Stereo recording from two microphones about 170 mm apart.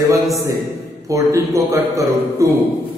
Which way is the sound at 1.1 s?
20° right (ahead or behind).